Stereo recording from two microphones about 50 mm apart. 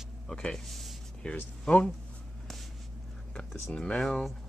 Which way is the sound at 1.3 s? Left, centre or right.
Left.